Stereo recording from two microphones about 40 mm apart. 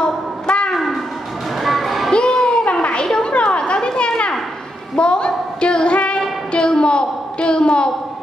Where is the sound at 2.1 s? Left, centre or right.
Left.